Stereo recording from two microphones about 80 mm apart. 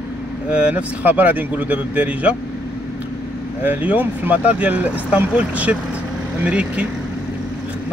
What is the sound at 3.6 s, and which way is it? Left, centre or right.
Speech, right.